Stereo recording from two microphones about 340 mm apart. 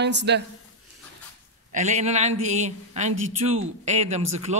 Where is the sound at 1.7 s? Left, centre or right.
Right.